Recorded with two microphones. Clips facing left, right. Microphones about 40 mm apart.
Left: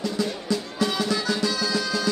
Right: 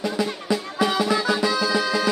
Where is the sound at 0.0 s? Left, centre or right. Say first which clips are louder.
Right 2 dB; centre.